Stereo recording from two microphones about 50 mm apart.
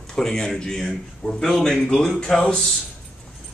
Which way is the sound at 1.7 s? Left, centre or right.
Centre.